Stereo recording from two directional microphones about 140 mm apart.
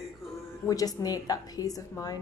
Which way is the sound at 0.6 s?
25° left (ahead or behind).